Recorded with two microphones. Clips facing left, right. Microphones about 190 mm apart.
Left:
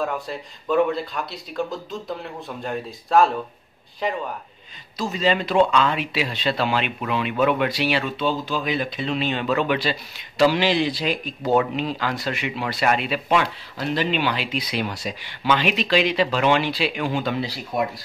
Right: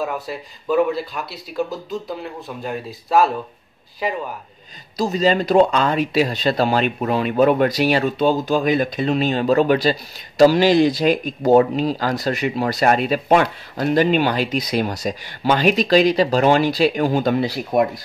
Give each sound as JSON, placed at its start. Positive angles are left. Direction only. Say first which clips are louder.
{"t": 0.0, "sound": "speech", "louder": "right 1 dB", "side_deg": -5}
{"t": 4.9, "sound": "speech", "louder": "right 4 dB", "side_deg": -40}